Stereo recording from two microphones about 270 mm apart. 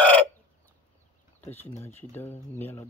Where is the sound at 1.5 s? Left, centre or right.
Centre.